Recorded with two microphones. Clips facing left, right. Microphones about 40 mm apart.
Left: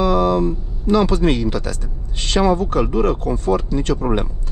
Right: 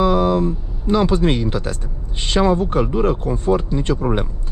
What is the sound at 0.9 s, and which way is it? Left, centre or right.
Speech, right.